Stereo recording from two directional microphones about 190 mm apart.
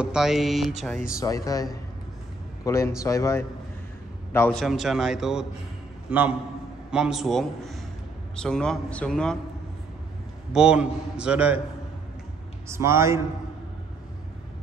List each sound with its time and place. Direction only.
0.0 s a man's voice: 5° right (ahead or behind)
1.2 s a man's voice: 15° left (ahead or behind)
4.6 s a man's voice: centre (ahead or behind)
10.5 s a man's voice: 5° right (ahead or behind)
12.6 s a man's voice: 15° right (ahead or behind)